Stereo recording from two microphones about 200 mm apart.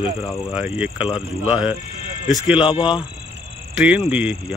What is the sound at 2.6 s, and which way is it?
Speech, 25° left (ahead or behind).